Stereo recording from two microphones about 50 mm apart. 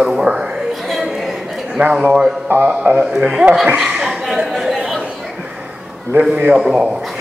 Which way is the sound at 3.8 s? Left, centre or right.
Centre.